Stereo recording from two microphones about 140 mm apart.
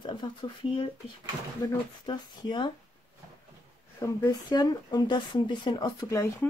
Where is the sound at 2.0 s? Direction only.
30° left (ahead or behind).